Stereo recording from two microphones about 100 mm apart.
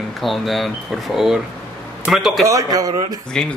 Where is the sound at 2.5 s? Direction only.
35° right (ahead or behind).